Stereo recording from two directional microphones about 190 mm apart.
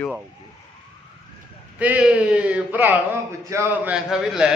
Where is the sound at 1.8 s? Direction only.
5° right (ahead or behind).